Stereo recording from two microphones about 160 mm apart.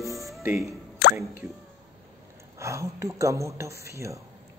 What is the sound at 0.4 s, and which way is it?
Speech, 15° right (ahead or behind).